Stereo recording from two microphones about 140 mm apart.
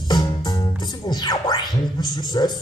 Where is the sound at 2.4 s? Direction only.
30° left (ahead or behind).